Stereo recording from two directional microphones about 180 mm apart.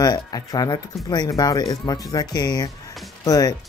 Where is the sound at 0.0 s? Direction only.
20° left (ahead or behind).